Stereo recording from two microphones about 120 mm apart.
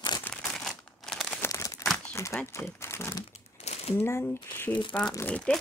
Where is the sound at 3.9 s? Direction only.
20° left (ahead or behind).